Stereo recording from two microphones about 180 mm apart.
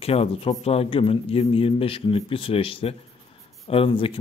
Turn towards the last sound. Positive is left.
turn(degrees=30)  # may be behind; listen again after turning